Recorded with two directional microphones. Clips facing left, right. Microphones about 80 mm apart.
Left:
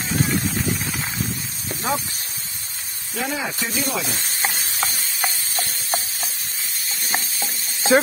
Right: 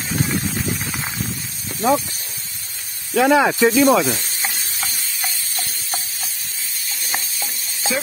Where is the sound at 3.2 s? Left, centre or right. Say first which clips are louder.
Right 12 dB; right.